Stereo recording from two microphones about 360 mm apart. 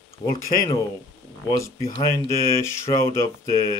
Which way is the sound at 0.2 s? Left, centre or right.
Centre.